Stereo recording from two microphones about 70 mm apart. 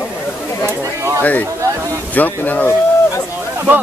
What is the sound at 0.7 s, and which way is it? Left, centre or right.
Speech, right.